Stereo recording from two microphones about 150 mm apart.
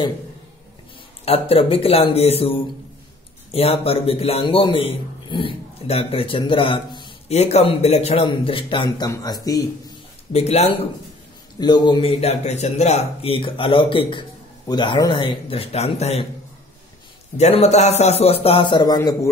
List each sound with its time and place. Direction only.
1.2 s a man's voice: 40° left (ahead or behind)
7.2 s a man's voice: 45° left (ahead or behind); by 9.7 s 25° left (ahead or behind)
10.3 s speech: 45° left (ahead or behind)
11.6 s a man's voice: 30° left (ahead or behind)
17.4 s a man's voice: 45° left (ahead or behind)